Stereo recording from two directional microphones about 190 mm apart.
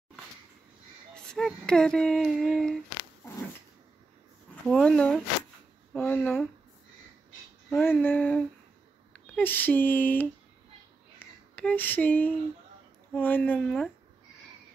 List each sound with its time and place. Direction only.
1.1 s a sound: 5° left (ahead or behind)
4.6 s speech: 5° left (ahead or behind)
5.9 s female singing: 10° left (ahead or behind)
7.7 s female singing: 10° left (ahead or behind)
9.1 s speech: 10° left (ahead or behind)
11.1 s a sound: 10° left (ahead or behind)
13.1 s female singing: 10° left (ahead or behind)